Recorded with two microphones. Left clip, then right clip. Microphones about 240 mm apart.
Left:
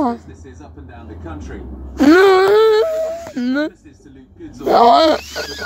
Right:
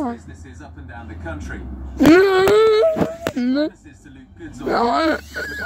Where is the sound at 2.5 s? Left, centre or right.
Left.